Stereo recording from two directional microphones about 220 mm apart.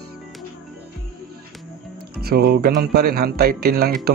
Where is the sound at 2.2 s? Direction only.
45° right (ahead or behind).